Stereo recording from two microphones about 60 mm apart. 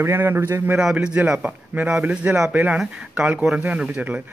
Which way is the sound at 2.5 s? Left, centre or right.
Right.